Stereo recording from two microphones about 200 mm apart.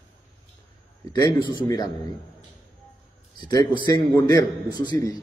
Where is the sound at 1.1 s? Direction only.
20° left (ahead or behind).